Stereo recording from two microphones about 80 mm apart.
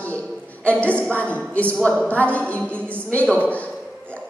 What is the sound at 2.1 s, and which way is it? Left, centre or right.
A woman's voice, centre.